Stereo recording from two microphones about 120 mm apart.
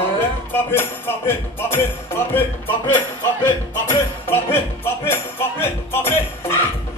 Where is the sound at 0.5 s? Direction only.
20° left (ahead or behind).